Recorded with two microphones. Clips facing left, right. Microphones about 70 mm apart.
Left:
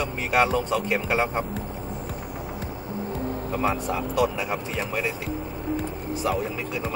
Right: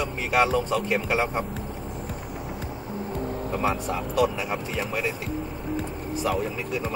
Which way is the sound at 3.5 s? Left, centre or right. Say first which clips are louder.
Left 1 dB; centre.